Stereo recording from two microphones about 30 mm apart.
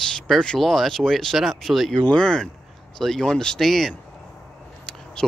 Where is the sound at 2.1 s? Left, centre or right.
Left.